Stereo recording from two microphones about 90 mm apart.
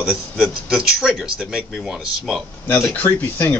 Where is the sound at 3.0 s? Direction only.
25° left (ahead or behind).